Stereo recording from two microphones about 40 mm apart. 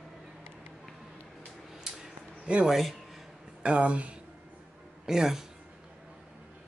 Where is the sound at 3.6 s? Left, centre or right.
Right.